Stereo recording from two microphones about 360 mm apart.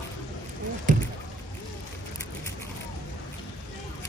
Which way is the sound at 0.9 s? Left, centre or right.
Right.